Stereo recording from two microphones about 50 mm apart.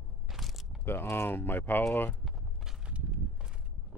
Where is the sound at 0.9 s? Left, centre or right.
Left.